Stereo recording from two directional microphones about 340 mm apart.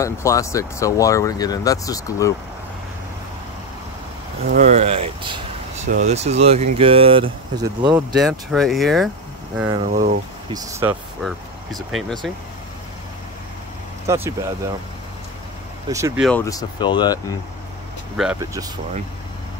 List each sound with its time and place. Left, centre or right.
0.0 s speech: centre
4.5 s speech: right
7.8 s speech: centre
9.6 s speech: centre
9.8 s speech: right
10.5 s speech: centre
14.0 s speech: centre
15.9 s speech: centre
16.3 s speech: centre
18.1 s speech: centre